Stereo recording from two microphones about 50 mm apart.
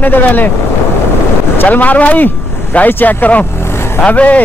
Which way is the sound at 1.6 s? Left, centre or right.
Left.